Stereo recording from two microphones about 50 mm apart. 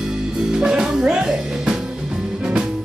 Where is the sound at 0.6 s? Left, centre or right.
Centre.